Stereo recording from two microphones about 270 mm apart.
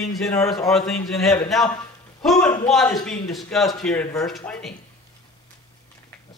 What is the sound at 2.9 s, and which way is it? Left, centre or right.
Speech, centre.